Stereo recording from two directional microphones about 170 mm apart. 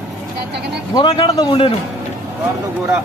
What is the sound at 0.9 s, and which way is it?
Speech, 25° left (ahead or behind).